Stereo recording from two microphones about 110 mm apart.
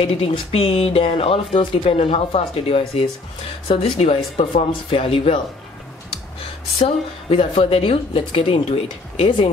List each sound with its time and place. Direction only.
0.0 s a woman's voice: 60° left (ahead or behind)
6.8 s a woman's voice: 65° left (ahead or behind)